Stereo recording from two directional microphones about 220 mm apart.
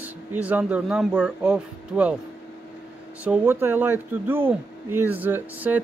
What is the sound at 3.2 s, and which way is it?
Speech, 10° right (ahead or behind).